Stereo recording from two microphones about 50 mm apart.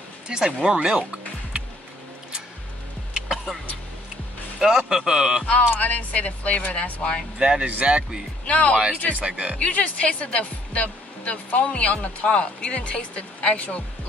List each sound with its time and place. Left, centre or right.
0.3 s speech: centre
0.7 s music: centre
3.2 s music: centre
4.6 s speech: centre
5.8 s speech: left
7.3 s speech: centre
8.5 s speech: left
9.2 s speech: right
9.6 s speech: left